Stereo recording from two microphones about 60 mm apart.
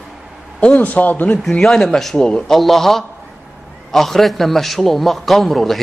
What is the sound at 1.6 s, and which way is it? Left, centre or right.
A man's voice, centre.